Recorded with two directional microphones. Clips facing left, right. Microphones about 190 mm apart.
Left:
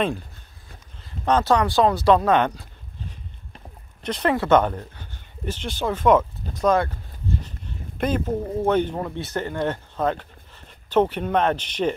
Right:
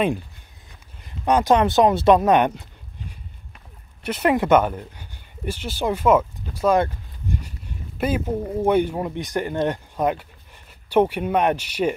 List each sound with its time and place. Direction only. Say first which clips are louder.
1.0 s speech: right 2 dB; 15° right (ahead or behind)
6.8 s a sound: right 3 dB; 15° right (ahead or behind)
8.0 s speech: even; 5° right (ahead or behind)